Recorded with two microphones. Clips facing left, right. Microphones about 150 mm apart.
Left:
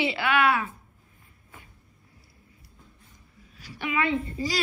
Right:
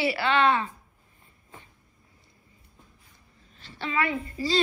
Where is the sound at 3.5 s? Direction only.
10° left (ahead or behind).